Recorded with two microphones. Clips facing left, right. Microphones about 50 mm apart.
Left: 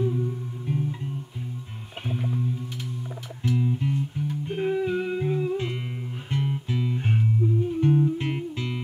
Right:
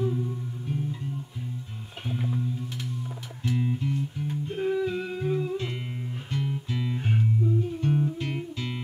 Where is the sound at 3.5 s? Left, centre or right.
Right.